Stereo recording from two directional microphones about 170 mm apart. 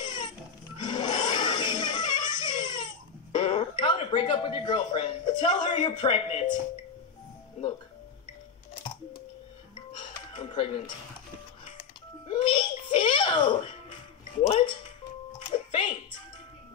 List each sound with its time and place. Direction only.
0.0 s music: 25° left (ahead or behind)
0.7 s a sound: 25° left (ahead or behind)
3.3 s speech: 30° left (ahead or behind)
10.3 s a sound: 35° left (ahead or behind)
12.3 s music: 30° left (ahead or behind)
14.4 s speech: 30° left (ahead or behind)
15.3 s music: 30° left (ahead or behind)